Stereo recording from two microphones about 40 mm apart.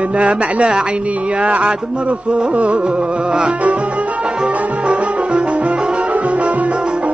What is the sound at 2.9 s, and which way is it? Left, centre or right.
Music, right.